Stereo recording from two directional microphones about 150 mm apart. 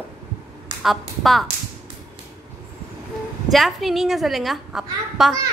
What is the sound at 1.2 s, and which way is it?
Speech, centre (ahead or behind).